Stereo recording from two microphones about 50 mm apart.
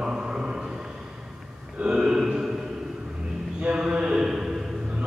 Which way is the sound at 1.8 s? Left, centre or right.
Centre.